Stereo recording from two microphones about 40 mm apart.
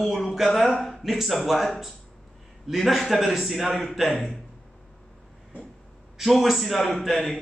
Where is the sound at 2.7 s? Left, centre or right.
Centre.